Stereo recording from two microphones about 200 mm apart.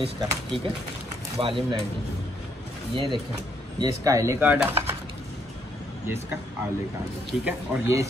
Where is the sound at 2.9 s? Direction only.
25° right (ahead or behind); by 4.7 s 10° right (ahead or behind).